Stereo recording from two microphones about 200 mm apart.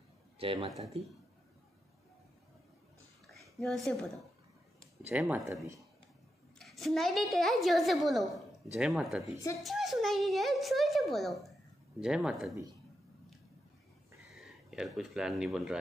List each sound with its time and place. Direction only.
0.4 s speech: 25° right (ahead or behind)
0.7 s a child's voice: centre (ahead or behind)
3.3 s a sound: centre (ahead or behind)
5.0 s speech: 10° right (ahead or behind)
6.6 s a child's voice: centre (ahead or behind)
14.3 s speech: centre (ahead or behind)